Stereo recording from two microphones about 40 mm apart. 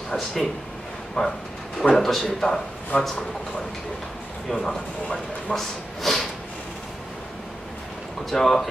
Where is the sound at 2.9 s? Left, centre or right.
Left.